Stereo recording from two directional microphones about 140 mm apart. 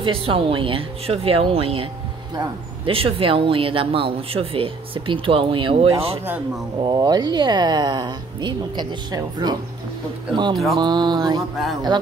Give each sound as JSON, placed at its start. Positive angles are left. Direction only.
{"t": 0.0, "sound": "speech", "side_deg": -40}
{"t": 6.8, "sound": "speech", "side_deg": -30}